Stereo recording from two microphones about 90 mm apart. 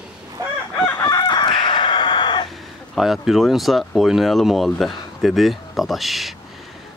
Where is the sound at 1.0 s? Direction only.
45° left (ahead or behind).